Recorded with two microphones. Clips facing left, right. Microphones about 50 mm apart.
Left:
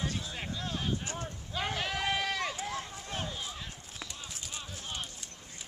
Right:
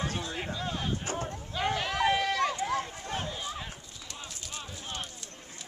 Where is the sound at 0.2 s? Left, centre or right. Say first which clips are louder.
Right 4 dB; centre.